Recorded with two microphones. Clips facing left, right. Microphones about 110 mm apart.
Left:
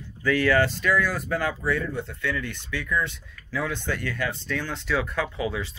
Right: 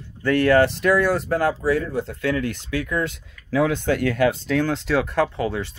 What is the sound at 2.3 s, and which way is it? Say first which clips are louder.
Speech: right 7 dB; 50° right (ahead or behind).